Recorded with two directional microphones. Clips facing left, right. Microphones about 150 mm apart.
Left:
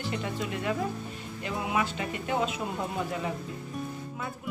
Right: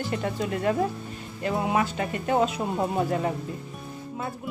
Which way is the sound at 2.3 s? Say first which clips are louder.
Right 6 dB; 45° right (ahead or behind).